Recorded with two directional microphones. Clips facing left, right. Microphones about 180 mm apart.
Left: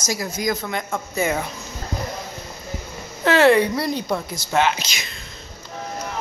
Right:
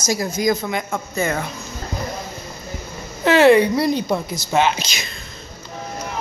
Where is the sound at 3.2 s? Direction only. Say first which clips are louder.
Right 3 dB; 15° right (ahead or behind).